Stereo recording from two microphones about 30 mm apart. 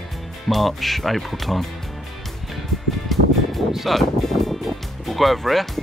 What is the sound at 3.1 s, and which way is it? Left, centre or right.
Music, centre.